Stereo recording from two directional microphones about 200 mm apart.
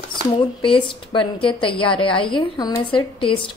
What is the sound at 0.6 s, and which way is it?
A woman's voice, 25° left (ahead or behind).